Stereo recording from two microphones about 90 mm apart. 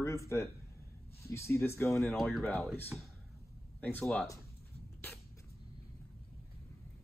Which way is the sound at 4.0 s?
5° left (ahead or behind).